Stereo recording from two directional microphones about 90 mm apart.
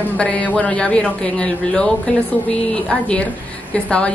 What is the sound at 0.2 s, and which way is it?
Speech, 15° left (ahead or behind).